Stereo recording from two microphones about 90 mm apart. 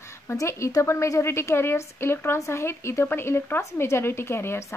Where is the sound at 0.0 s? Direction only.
30° left (ahead or behind).